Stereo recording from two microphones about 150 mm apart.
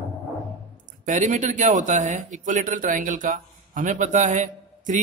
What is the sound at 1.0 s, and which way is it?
Speech, 55° right (ahead or behind).